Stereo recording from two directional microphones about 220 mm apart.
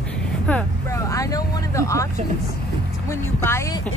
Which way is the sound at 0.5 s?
10° left (ahead or behind).